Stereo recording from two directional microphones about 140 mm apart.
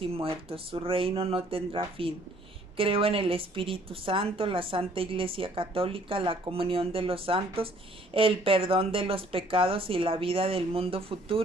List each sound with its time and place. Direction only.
0.0 s a woman's voice: 40° right (ahead or behind)